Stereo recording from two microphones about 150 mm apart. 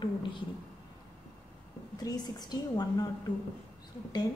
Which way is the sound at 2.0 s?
25° left (ahead or behind).